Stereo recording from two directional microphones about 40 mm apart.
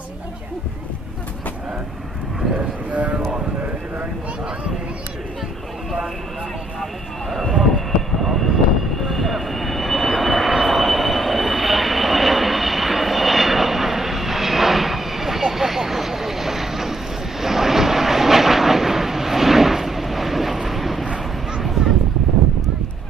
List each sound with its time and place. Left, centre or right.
2.9 s vehicle: right
6.8 s vehicle: centre
21.8 s a sound: right